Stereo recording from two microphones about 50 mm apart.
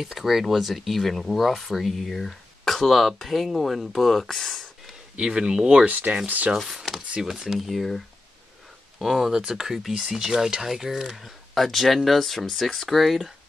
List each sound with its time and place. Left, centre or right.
0.0 s speech: centre
5.1 s speech: centre
5.9 s speech: right
6.5 s speech: centre
9.0 s speech: centre